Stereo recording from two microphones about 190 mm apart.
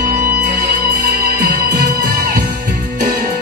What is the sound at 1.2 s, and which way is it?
Music, 45° right (ahead or behind).